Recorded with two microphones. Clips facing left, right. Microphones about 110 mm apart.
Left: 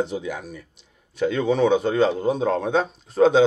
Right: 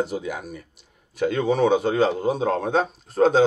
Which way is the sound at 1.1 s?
5° right (ahead or behind).